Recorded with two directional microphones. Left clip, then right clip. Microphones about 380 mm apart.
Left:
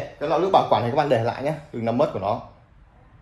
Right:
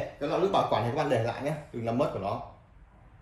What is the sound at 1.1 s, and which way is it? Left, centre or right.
Speech, centre.